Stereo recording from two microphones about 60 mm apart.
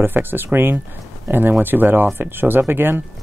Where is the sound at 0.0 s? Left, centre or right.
Right.